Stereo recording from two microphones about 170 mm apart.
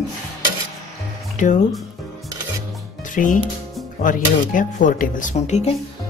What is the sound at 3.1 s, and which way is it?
Speech, 50° left (ahead or behind).